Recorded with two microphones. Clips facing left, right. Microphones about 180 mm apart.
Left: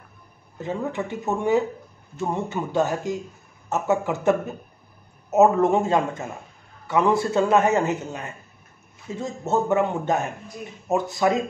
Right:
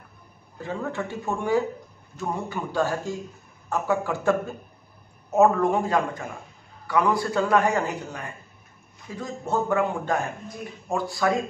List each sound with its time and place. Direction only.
0.6 s a man's voice: 20° left (ahead or behind)